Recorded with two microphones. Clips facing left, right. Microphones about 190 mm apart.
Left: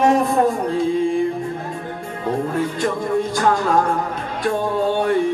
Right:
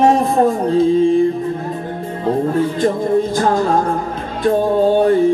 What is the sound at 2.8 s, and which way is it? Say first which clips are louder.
Music: right 6 dB; 30° right (ahead or behind).